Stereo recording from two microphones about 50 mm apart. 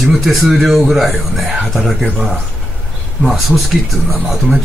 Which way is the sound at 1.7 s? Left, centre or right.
Centre.